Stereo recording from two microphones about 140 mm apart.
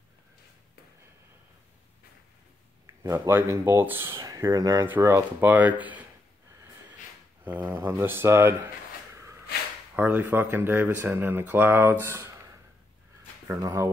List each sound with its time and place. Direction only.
3.0 s speech: 20° right (ahead or behind)
7.4 s speech: 10° right (ahead or behind)
9.9 s speech: 10° right (ahead or behind)
13.5 s speech: 25° right (ahead or behind)